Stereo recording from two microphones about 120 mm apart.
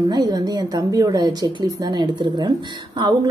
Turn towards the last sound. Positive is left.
turn(degrees=-35)  # may be behind; listen again after turning